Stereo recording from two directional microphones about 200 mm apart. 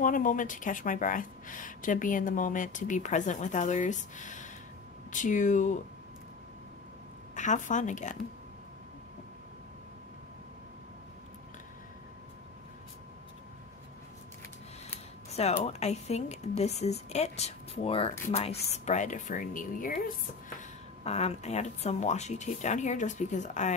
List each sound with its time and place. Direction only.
0.0 s a woman's voice: 40° left (ahead or behind)
7.3 s a woman's voice: 40° left (ahead or behind)
15.3 s a woman's voice: 30° left (ahead or behind)
21.0 s a woman's voice: 30° left (ahead or behind)